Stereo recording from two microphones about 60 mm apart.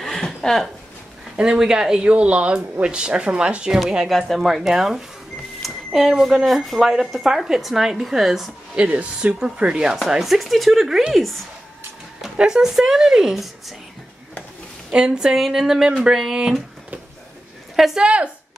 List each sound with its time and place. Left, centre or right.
0.0 s speech: centre
1.3 s speech: centre
4.1 s a woman's voice: centre
8.7 s a woman's voice: right; by 11.1 s centre
12.4 s speech: centre
14.9 s speech: centre
17.7 s speech: centre
18.0 s speech: centre